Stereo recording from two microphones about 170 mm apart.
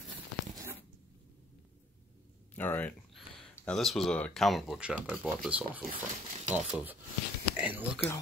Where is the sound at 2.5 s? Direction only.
10° left (ahead or behind).